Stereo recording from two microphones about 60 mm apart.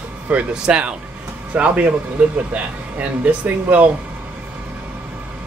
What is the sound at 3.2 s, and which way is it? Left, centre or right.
Speech, right.